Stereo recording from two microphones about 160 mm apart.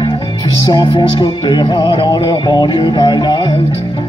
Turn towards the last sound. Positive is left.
turn(degrees=30)  # may be behind; listen again after turning